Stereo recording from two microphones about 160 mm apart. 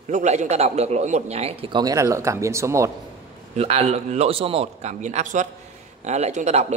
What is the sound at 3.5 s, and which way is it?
A man's voice, 40° right (ahead or behind).